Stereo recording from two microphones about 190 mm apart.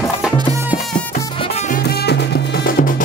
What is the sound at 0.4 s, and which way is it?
Music, 15° right (ahead or behind).